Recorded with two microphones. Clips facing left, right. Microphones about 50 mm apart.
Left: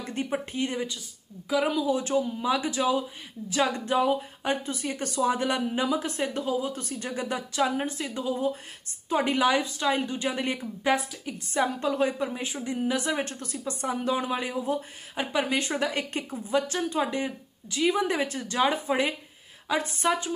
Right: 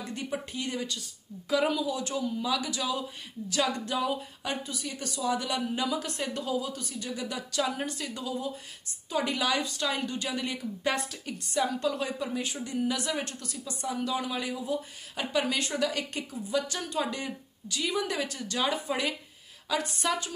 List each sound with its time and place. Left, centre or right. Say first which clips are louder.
0.0 s speech: left 4 dB; left
1.5 s a woman's voice: left 1 dB; centre
1.9 s a woman's voice: left 5 dB; left
10.8 s a woman's voice: left 5 dB; centre
11.5 s speech: left 2 dB; left
12.4 s a woman's voice: left 2 dB; centre